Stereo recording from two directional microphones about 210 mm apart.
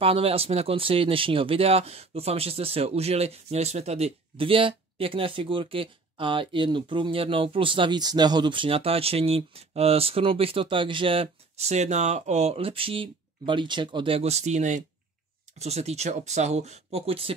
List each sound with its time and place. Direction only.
0.0 s speech: 25° right (ahead or behind)